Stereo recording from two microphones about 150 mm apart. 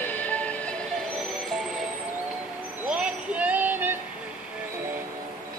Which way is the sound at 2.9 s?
10° right (ahead or behind).